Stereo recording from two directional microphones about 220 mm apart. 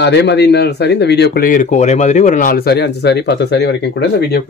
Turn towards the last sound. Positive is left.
turn(degrees=50)  # may be behind; listen again after turning